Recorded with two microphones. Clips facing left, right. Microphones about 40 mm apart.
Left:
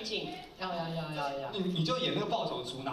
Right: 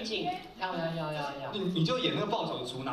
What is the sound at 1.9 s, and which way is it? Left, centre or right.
Speech, right.